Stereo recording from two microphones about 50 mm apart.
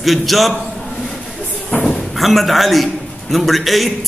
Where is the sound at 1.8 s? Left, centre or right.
Centre.